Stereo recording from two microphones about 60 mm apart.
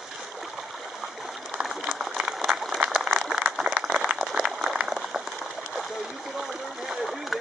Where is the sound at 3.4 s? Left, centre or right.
Right.